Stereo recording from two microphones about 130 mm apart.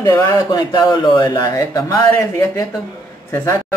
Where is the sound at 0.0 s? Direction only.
25° left (ahead or behind).